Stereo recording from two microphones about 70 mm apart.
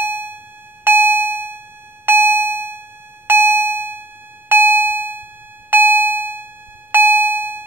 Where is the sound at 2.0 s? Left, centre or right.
Right.